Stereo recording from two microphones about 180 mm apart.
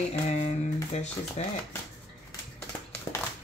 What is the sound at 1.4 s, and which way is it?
Speech, 35° left (ahead or behind).